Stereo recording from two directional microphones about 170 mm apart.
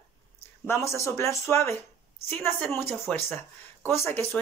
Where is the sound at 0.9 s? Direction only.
15° left (ahead or behind).